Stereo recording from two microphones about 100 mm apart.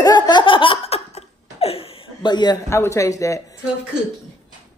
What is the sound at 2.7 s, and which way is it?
Speech, 30° left (ahead or behind).